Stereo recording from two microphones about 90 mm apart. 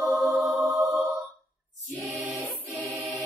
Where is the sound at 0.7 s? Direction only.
15° right (ahead or behind).